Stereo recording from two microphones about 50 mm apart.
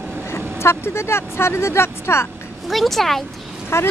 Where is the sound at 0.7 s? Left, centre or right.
Left.